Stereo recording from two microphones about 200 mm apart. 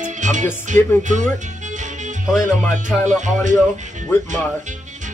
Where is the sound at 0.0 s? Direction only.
40° right (ahead or behind).